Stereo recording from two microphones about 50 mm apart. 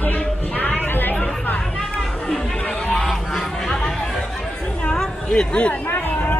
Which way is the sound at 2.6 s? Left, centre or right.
Left.